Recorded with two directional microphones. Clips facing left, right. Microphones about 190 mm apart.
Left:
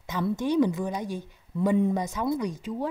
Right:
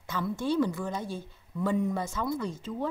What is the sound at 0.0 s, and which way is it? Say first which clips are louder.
A woman's voice: left 4 dB; 20° left (ahead or behind).